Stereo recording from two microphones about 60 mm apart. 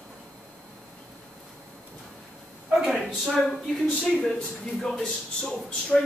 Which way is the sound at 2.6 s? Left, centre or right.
Centre.